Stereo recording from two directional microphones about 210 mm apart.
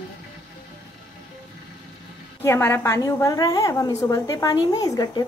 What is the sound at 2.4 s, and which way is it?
A woman's voice, 10° left (ahead or behind).